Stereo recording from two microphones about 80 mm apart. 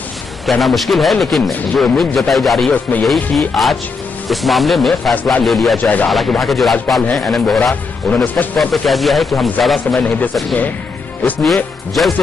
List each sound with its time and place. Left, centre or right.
0.5 s a man's voice: centre
5.8 s speech: left
6.0 s a man's voice: centre
9.9 s speech: centre
11.4 s a man's voice: centre